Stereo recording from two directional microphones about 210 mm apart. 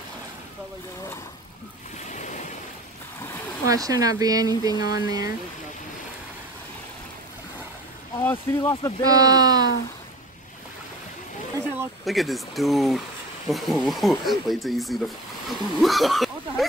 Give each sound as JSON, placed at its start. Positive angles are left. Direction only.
{"t": 2.0, "sound": "waves", "side_deg": 35}
{"t": 3.6, "sound": "speech", "side_deg": -15}
{"t": 8.2, "sound": "speech", "side_deg": 10}
{"t": 9.0, "sound": "speech", "side_deg": -15}
{"t": 12.0, "sound": "speech", "side_deg": 0}